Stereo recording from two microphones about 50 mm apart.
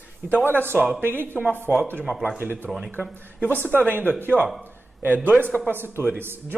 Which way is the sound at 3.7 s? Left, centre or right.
Right.